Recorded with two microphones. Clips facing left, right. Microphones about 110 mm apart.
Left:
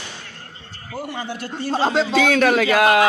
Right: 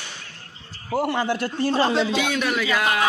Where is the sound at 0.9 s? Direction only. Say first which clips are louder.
Right 6 dB; 70° right (ahead or behind).